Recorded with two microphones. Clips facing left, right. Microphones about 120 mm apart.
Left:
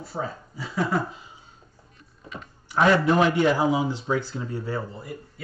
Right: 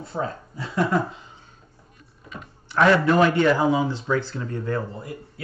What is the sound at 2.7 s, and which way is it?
Speech, 15° left (ahead or behind).